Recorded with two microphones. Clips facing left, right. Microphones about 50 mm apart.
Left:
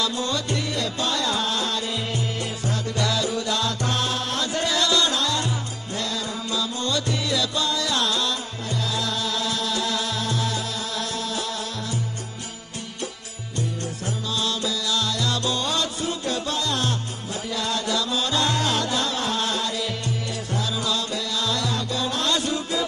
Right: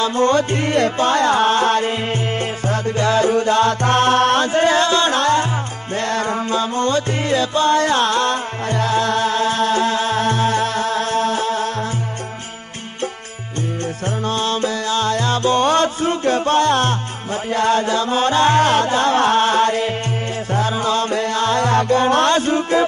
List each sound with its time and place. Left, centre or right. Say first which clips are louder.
0.0 s music: right 10 dB; right
4.5 s music: right 8 dB; right
14.2 s music: right 7 dB; right